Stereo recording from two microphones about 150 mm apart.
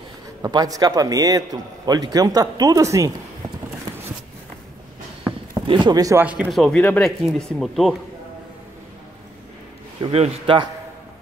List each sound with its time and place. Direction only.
0.4 s a man's voice: 25° right (ahead or behind)
5.7 s a man's voice: 25° right (ahead or behind)
6.2 s speech: 10° right (ahead or behind)
10.1 s a man's voice: 40° right (ahead or behind)